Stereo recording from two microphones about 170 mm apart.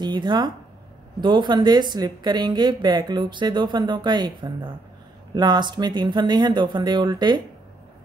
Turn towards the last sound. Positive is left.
turn(degrees=-25)  # may be behind; listen again after turning